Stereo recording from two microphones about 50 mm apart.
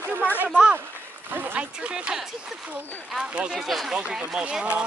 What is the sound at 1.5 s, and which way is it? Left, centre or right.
Speech, right.